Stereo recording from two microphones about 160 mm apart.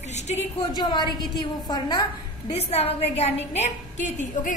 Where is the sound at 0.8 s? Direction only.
30° left (ahead or behind).